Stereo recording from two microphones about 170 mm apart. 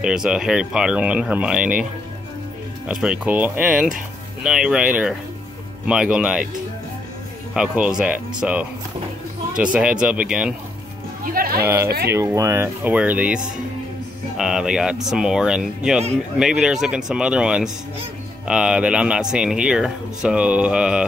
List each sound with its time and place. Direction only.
0.0 s speech: 5° right (ahead or behind)
2.9 s speech: 5° right (ahead or behind)
7.5 s speech: 5° right (ahead or behind)
11.2 s speech: 60° right (ahead or behind)
11.6 s speech: 15° right (ahead or behind)